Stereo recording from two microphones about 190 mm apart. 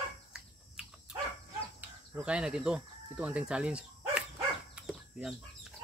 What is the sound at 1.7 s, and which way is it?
Speech, 5° right (ahead or behind).